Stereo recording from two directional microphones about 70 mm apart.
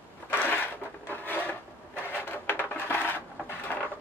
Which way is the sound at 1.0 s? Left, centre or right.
Left.